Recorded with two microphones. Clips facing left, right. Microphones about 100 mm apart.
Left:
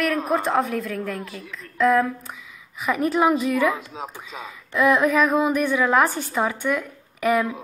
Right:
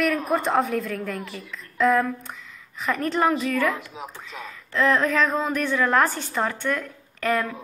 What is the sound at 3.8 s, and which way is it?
Speech, 25° left (ahead or behind).